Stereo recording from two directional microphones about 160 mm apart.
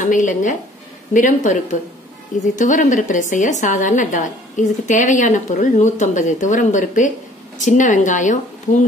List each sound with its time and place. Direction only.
0.0 s a woman's voice: 55° left (ahead or behind)